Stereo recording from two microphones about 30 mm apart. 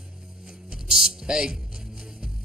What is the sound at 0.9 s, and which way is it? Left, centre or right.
Speech, right.